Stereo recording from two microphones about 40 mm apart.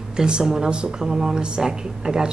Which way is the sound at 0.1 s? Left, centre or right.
Centre.